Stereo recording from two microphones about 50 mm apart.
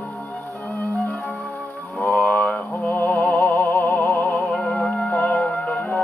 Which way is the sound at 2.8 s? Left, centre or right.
Left.